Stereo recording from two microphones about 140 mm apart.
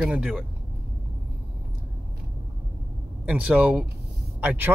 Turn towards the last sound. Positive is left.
turn(degrees=-15)  # may be behind; listen again after turning